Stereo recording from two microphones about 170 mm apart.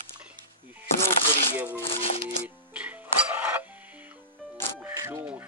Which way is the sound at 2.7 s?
10° right (ahead or behind).